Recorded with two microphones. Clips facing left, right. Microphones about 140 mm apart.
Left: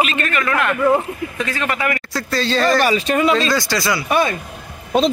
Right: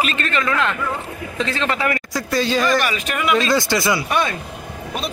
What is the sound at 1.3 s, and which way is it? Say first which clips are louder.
Speech: right 2 dB; 25° right (ahead or behind).